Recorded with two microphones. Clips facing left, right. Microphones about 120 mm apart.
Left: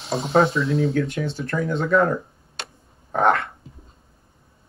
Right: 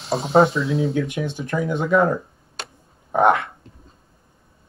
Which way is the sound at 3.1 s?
15° right (ahead or behind).